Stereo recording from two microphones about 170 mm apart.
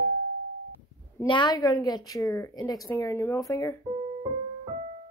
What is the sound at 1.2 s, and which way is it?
A woman's voice, 25° left (ahead or behind).